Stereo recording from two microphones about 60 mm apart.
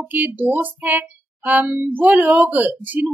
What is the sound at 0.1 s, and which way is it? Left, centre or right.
A woman's voice, right.